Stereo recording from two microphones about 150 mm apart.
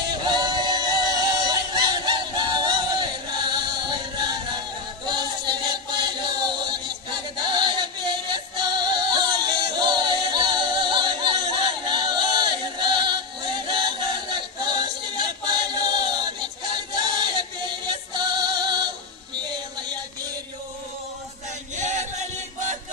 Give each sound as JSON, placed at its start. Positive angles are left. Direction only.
{"t": 0.1, "sound": "music", "side_deg": -30}
{"t": 5.0, "sound": "chant", "side_deg": -30}
{"t": 21.7, "sound": "choir", "side_deg": -50}